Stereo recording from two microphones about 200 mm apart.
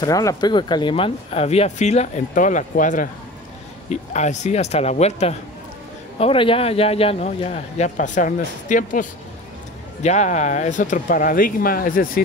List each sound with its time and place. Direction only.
0.0 s speech: 15° left (ahead or behind); by 9.0 s 40° left (ahead or behind)
10.0 s speech: 35° left (ahead or behind)